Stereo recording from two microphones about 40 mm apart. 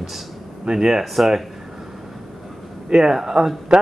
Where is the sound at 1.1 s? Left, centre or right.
Centre.